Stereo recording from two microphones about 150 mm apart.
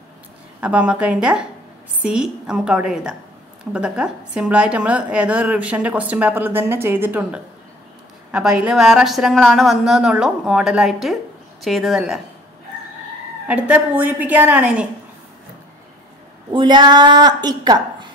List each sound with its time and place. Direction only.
0.6 s a woman's voice: 10° right (ahead or behind)
13.5 s a woman's voice: 10° right (ahead or behind)
16.5 s a woman's voice: 30° right (ahead or behind)